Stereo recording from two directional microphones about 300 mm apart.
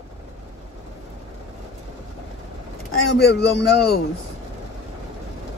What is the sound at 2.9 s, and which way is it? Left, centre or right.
Speech, left.